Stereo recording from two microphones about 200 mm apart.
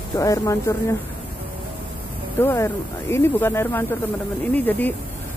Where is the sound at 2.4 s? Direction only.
10° left (ahead or behind).